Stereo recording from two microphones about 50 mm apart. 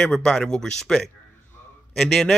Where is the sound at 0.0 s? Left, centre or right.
Centre.